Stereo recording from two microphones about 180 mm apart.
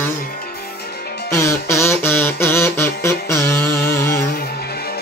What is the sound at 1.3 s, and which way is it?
Music, 15° left (ahead or behind).